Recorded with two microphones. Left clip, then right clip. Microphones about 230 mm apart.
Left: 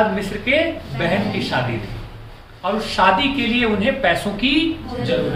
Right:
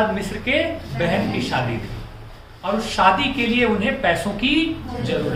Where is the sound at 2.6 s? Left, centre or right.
Centre.